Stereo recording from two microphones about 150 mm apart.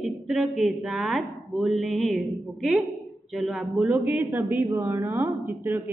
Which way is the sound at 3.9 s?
15° right (ahead or behind).